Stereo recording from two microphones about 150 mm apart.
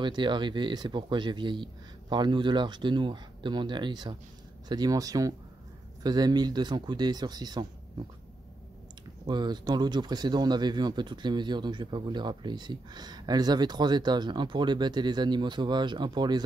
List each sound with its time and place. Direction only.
0.0 s speech: 30° right (ahead or behind)
9.3 s speech: 30° right (ahead or behind)